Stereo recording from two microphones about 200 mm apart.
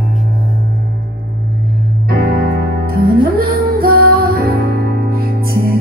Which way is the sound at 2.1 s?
50° right (ahead or behind).